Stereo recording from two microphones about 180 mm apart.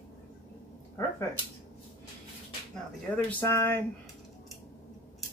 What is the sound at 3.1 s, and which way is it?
Speech, 15° left (ahead or behind).